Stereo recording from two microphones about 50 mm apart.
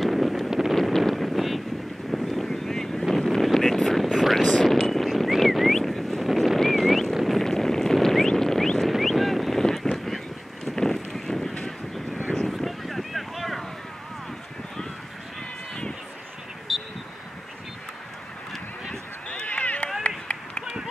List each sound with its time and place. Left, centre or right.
0.0 s wind noise: centre
0.8 s wind noise: centre
2.0 s boat: centre
4.6 s a sound: centre
7.2 s boat: centre
8.9 s clip-clop: centre
10.8 s boat: centre
12.4 s a sound: centre
16.7 s vehicle: centre
19.2 s run: left